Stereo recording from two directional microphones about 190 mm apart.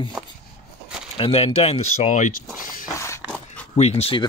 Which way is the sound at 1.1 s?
30° left (ahead or behind).